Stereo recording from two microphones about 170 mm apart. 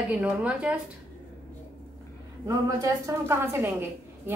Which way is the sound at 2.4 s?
20° right (ahead or behind).